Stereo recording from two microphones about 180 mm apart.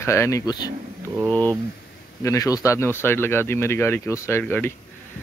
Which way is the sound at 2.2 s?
20° left (ahead or behind).